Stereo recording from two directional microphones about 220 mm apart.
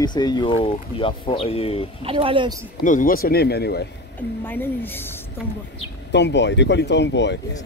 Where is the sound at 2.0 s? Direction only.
25° right (ahead or behind).